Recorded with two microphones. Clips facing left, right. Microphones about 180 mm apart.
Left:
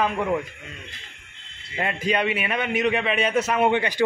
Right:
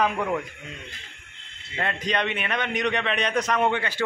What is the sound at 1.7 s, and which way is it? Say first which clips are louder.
A man's voice: left 3 dB; 10° left (ahead or behind).